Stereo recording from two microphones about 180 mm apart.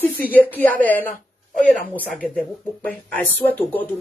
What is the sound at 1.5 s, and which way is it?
Speech, 45° left (ahead or behind).